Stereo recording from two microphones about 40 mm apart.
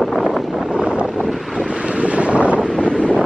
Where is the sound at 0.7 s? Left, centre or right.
Right.